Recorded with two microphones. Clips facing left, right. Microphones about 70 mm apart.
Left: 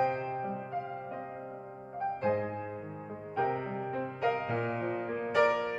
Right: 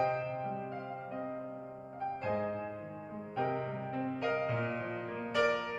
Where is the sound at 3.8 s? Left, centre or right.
Centre.